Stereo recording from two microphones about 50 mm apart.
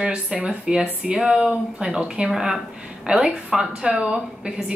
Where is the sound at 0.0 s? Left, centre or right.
Centre.